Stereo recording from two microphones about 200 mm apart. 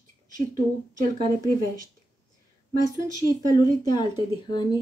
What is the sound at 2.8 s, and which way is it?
Speech, 20° left (ahead or behind).